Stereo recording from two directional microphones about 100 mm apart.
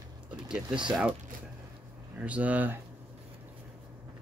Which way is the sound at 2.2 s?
15° right (ahead or behind).